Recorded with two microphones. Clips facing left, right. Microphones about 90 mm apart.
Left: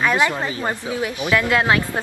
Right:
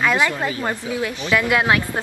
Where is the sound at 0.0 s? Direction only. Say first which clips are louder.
Even; 15° left (ahead or behind).